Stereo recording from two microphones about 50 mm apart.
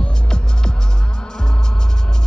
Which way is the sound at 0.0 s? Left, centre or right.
Centre.